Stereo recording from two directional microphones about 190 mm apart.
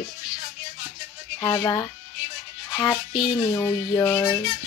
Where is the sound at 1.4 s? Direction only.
20° left (ahead or behind).